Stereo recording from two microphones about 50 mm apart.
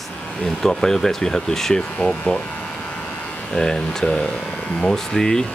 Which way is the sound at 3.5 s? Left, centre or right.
Centre.